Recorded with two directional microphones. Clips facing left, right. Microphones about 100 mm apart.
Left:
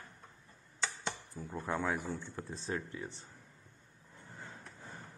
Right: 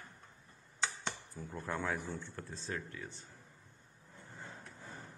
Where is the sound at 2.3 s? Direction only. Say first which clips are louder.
Left 3 dB; 20° left (ahead or behind).